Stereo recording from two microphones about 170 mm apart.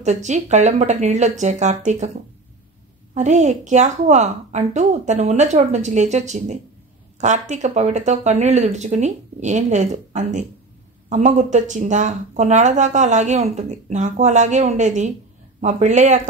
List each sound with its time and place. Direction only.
0.0 s speech: 45° right (ahead or behind)
3.2 s speech: 45° right (ahead or behind)